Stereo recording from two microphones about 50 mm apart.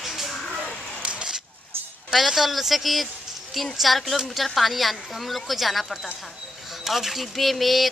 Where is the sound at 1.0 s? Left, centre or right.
Right.